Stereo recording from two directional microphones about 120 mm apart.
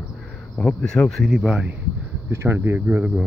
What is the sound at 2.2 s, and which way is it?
Speech, 20° right (ahead or behind).